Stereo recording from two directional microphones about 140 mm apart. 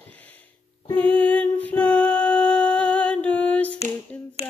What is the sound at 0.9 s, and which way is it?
Music, 10° left (ahead or behind).